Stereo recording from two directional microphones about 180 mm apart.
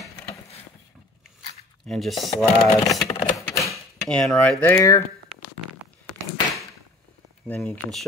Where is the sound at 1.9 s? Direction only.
Centre (ahead or behind).